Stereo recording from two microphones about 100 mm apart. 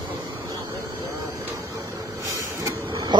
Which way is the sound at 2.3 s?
35° right (ahead or behind).